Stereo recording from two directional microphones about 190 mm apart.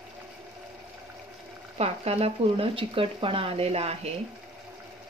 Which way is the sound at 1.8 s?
35° right (ahead or behind).